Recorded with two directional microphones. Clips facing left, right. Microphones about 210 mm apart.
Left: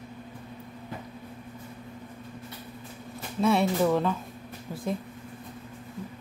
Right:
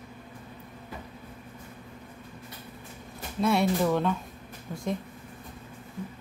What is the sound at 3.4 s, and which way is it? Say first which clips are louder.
Speech: left 1 dB; centre (ahead or behind).